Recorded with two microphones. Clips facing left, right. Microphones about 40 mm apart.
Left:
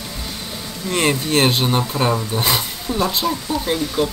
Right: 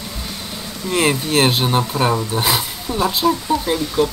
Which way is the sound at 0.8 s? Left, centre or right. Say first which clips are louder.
Right 1 dB; centre.